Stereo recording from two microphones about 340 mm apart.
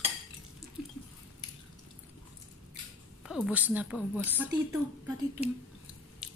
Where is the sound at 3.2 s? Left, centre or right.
Centre.